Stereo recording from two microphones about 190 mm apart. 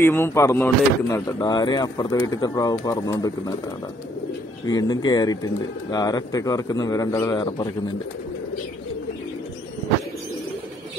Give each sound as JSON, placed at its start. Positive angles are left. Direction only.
{"t": 0.0, "sound": "speech", "side_deg": 15}
{"t": 4.6, "sound": "speech", "side_deg": 20}